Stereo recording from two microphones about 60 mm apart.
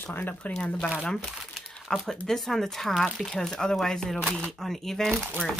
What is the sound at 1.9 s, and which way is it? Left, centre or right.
Speech, centre.